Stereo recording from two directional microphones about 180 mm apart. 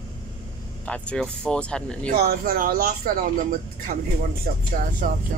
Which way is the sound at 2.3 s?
55° right (ahead or behind).